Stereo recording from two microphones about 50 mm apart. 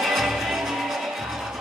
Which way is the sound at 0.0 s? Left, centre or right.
Centre.